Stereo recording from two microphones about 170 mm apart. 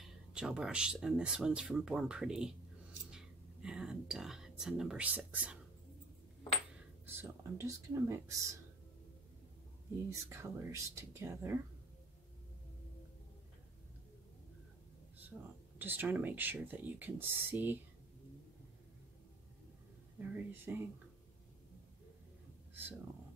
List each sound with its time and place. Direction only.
0.0 s speech: 5° right (ahead or behind)
3.1 s a sound: 5° right (ahead or behind)
7.2 s speech: 20° right (ahead or behind)
10.0 s speech: 15° right (ahead or behind)
15.3 s speech: 5° right (ahead or behind)
20.2 s speech: 10° right (ahead or behind)